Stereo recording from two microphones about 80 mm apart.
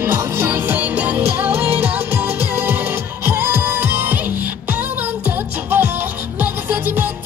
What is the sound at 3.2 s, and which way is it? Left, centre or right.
Music, right.